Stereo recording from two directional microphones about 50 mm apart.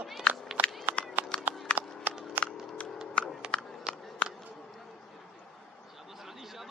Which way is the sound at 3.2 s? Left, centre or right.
Left.